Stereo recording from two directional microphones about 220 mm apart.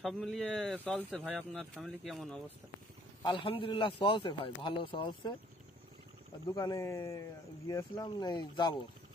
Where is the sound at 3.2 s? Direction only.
20° left (ahead or behind).